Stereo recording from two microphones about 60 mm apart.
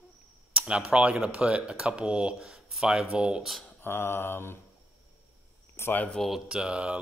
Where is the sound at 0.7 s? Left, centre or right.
Centre.